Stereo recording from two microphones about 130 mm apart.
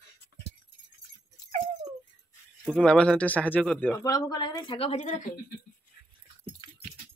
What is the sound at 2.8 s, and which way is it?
Speech, 10° left (ahead or behind).